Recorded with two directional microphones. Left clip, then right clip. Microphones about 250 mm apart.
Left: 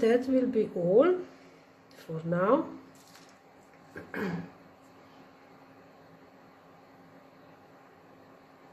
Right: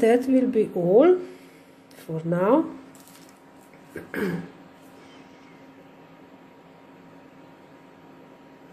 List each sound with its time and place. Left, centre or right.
0.0 s a woman's voice: centre
2.2 s a woman's voice: centre
3.9 s throat clearing: centre